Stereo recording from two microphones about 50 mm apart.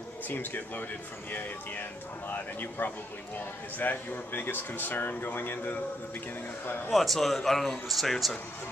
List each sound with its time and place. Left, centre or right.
0.3 s speech: left
6.9 s speech: centre